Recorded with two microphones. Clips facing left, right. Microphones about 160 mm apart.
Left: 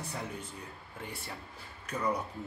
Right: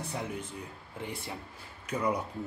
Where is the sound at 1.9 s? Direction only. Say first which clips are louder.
Right 2 dB; 10° right (ahead or behind).